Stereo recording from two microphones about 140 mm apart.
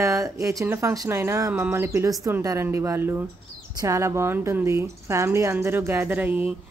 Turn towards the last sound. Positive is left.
turn(degrees=-15)  # may be behind; listen again after turning